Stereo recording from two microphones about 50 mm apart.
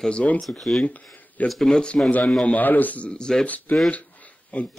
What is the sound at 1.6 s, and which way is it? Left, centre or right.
Speech, centre.